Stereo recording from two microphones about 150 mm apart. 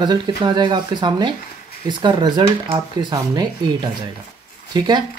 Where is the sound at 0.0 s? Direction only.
30° right (ahead or behind).